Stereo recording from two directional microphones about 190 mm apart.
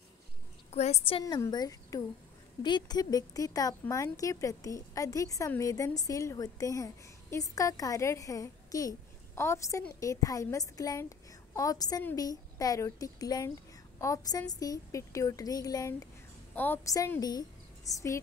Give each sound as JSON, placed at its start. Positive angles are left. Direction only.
{"t": 0.7, "sound": "a woman's voice", "side_deg": 35}
{"t": 1.2, "sound": "a woman's voice", "side_deg": 20}